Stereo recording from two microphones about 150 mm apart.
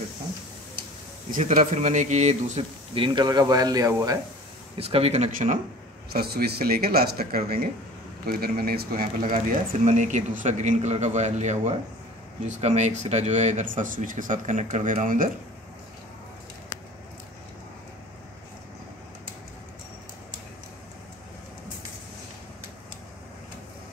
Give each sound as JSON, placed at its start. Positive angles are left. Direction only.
{"t": 1.3, "sound": "a man's voice", "side_deg": -55}
{"t": 2.9, "sound": "speech", "side_deg": -35}
{"t": 4.7, "sound": "a man's voice", "side_deg": -40}
{"t": 6.1, "sound": "a man's voice", "side_deg": -90}